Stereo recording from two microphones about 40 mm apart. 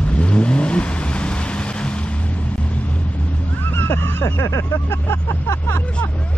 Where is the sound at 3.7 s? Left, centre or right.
Left.